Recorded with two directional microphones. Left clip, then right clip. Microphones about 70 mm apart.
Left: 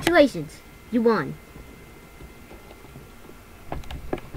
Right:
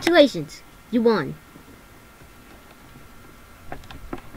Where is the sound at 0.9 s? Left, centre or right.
Right.